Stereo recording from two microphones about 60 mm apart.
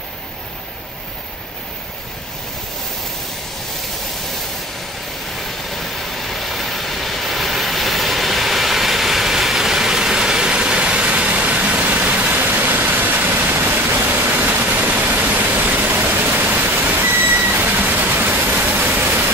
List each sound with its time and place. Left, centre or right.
6.1 s vehicle: centre; by 15.8 s right
16.0 s a sound: right
16.8 s vehicle: right